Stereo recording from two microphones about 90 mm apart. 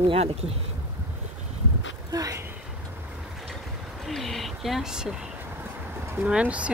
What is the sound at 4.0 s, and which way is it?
Speech, centre (ahead or behind).